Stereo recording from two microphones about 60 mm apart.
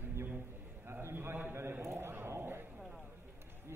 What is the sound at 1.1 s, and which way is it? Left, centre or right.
A man's voice, right.